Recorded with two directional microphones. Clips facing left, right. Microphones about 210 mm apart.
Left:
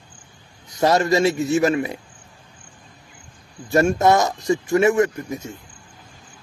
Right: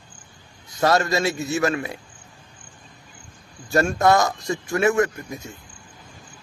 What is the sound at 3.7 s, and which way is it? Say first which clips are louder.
Speech: left 2 dB; 20° left (ahead or behind).